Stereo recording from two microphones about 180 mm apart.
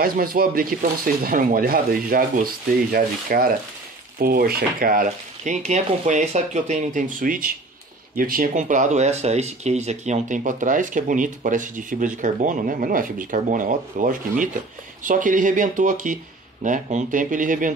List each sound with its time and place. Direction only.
0.0 s speech: 55° right (ahead or behind)